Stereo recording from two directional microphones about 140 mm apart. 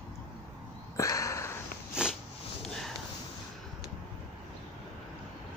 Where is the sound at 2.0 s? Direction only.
5° right (ahead or behind).